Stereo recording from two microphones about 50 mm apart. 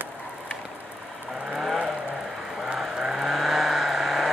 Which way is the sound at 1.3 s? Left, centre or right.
Centre.